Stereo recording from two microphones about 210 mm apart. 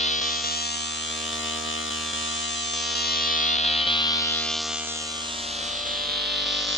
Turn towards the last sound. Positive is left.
turn(degrees=0)  # may be behind; listen again after turning